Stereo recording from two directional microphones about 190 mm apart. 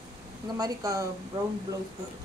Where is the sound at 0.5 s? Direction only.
20° right (ahead or behind).